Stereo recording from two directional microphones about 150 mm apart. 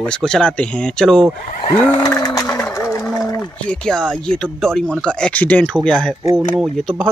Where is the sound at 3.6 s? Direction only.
5° left (ahead or behind).